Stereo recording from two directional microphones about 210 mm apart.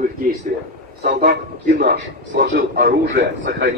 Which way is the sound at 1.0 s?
50° right (ahead or behind).